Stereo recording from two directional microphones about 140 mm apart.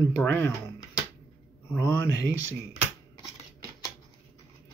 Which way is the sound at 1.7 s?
20° left (ahead or behind).